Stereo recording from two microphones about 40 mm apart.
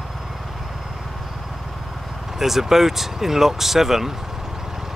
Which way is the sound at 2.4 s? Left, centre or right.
Centre.